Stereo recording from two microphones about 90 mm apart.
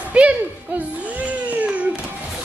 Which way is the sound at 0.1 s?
15° right (ahead or behind).